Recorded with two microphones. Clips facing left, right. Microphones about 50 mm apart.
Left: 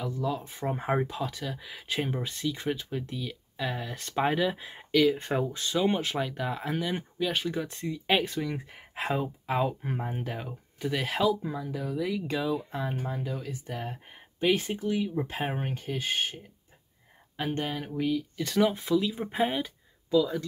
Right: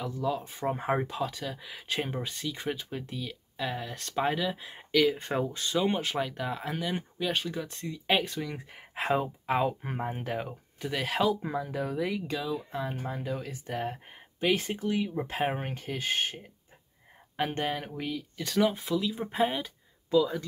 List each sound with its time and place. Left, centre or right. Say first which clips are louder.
0.0 s speech: even; centre
4.6 s speech: even; centre
9.0 s speech: right 2 dB; centre
10.8 s speech: left 2 dB; centre
11.4 s speech: right 2 dB; right
12.3 s speech: left 3 dB; centre
13.0 s speech: even; centre
14.4 s speech: left 2 dB; centre
14.8 s speech: left 1 dB; centre
17.4 s speech: right 1 dB; right
17.8 s speech: left 6 dB; centre
20.1 s speech: even; centre